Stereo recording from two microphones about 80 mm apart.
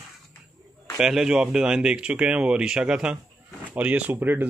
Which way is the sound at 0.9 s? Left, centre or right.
Centre.